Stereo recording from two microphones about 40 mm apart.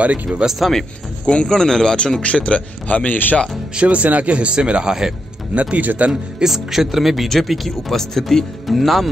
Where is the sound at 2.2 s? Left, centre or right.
Left.